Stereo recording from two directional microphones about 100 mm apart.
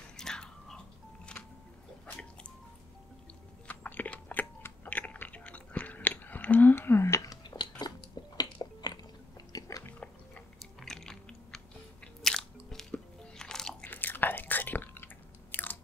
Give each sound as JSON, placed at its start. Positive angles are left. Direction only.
{"t": 0.2, "sound": "biting", "side_deg": 5}
{"t": 3.6, "sound": "biting", "side_deg": 15}
{"t": 7.8, "sound": "a sound", "side_deg": 45}
{"t": 8.4, "sound": "chewing", "side_deg": 45}
{"t": 9.8, "sound": "a sound", "side_deg": 10}
{"t": 10.6, "sound": "chewing", "side_deg": 5}
{"t": 12.2, "sound": "biting", "side_deg": 5}
{"t": 13.8, "sound": "chewing", "side_deg": 20}
{"t": 15.5, "sound": "biting", "side_deg": 20}